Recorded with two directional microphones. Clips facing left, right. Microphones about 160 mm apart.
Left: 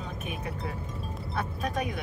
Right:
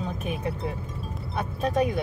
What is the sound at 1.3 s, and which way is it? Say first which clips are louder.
Speech: right 6 dB; 30° right (ahead or behind).